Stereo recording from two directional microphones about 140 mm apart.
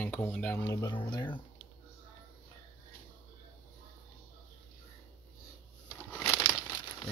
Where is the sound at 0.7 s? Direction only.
30° left (ahead or behind).